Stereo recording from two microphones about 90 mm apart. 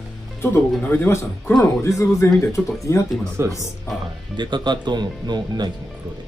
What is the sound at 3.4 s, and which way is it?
Speech, 30° right (ahead or behind).